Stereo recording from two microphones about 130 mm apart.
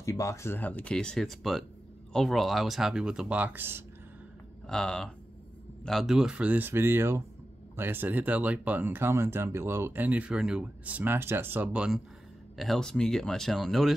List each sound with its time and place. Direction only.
0.0 s speech: 25° left (ahead or behind); by 3.8 s 15° right (ahead or behind)
4.6 s speech: 5° left (ahead or behind)